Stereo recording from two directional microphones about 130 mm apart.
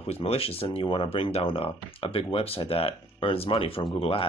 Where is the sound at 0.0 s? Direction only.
50° left (ahead or behind).